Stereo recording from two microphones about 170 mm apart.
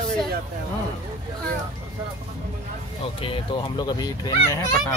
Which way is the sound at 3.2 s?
30° left (ahead or behind).